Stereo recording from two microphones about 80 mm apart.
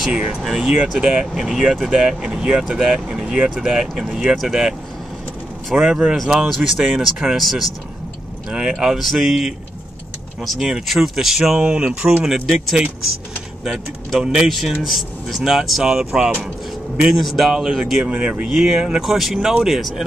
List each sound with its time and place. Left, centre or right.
0.0 s speech: centre
7.0 s speech: centre
14.2 s speech: centre
18.0 s speech: centre
18.5 s speech: centre